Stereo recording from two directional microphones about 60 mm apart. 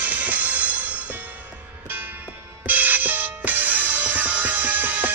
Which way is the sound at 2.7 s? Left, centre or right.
Right.